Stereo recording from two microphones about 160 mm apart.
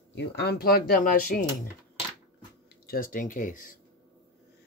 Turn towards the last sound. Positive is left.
turn(degrees=55)  # may be behind; listen again after turning